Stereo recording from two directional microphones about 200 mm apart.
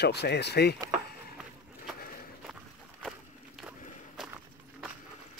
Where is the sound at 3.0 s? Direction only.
Centre (ahead or behind).